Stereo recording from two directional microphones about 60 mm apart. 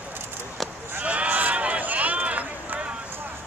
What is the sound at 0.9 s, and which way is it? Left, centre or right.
Run, right.